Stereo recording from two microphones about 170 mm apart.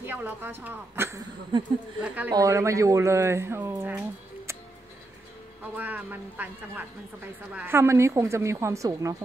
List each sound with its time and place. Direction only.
0.0 s speech: 10° right (ahead or behind)
1.5 s speech: 30° right (ahead or behind)
2.0 s speech: 10° right (ahead or behind)
5.8 s speech: 10° right (ahead or behind)